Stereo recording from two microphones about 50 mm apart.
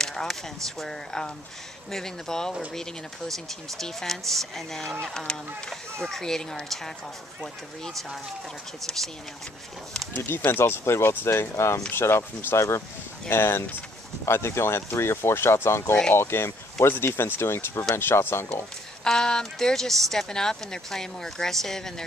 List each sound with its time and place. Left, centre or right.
0.0 s speech: centre
8.8 s speech: centre
10.1 s speech: left
10.6 s speech: left
11.0 s speech: left
11.9 s speech: left
12.5 s speech: left
13.3 s speech: left
19.0 s speech: centre